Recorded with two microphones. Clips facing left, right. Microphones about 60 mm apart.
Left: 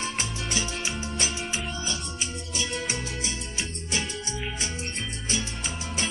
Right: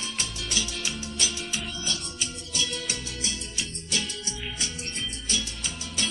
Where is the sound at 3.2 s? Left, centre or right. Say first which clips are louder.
Left 1 dB; left.